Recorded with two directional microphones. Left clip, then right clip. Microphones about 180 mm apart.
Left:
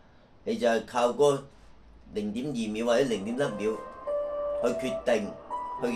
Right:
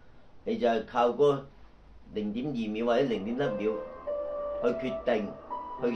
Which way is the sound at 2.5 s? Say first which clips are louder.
Left 2 dB; 15° left (ahead or behind).